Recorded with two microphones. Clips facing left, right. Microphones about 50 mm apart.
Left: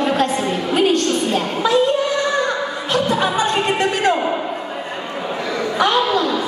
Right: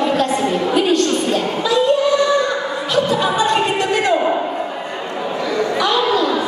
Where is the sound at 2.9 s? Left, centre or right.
Left.